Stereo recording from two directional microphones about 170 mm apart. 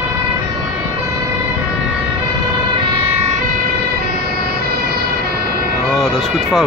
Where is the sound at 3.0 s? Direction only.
40° right (ahead or behind).